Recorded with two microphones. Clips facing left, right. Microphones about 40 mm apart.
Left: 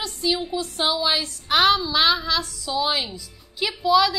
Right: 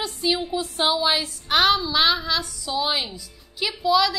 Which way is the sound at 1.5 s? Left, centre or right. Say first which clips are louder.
Left 1 dB; centre.